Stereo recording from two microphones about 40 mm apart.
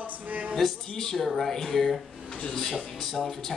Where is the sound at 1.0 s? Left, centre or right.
Centre.